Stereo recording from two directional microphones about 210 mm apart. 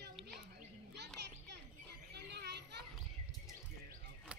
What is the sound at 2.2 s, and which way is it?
Children playing, 50° right (ahead or behind).